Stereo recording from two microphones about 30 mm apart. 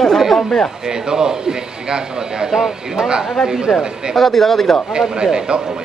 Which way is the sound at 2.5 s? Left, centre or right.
Centre.